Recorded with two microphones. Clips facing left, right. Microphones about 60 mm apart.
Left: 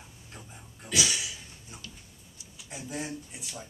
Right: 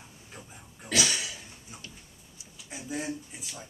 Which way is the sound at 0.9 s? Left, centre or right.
Right.